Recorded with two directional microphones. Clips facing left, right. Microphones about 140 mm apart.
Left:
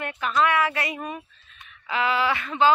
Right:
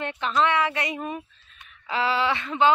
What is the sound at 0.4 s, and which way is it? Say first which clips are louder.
Speech: left 1 dB; 25° right (ahead or behind).